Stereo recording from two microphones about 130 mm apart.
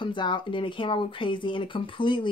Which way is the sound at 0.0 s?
40° left (ahead or behind).